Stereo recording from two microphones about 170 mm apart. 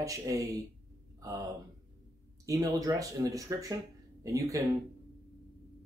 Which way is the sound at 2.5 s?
20° right (ahead or behind).